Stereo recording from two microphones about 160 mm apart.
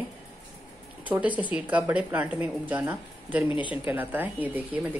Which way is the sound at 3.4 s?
30° left (ahead or behind).